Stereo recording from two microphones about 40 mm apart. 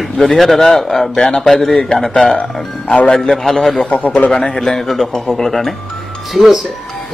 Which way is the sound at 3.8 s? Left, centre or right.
Left.